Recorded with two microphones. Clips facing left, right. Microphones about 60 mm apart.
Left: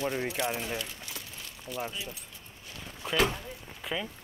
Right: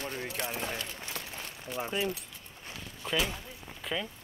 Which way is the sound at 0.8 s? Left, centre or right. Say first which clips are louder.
Right 1 dB; right.